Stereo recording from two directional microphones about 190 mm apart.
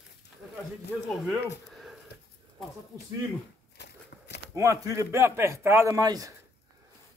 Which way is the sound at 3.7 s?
65° left (ahead or behind).